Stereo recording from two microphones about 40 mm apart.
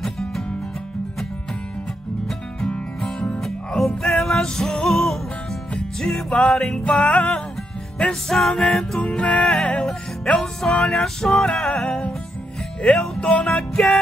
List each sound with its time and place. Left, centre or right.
0.0 s music: centre
3.3 s music: centre; by 7.4 s left
8.1 s music: centre
9.0 s music: left
9.4 s music: centre
13.2 s music: left